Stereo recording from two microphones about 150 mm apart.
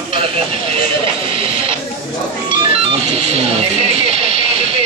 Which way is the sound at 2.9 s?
40° right (ahead or behind).